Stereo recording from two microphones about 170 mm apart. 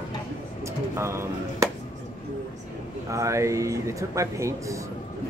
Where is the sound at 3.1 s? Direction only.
15° right (ahead or behind).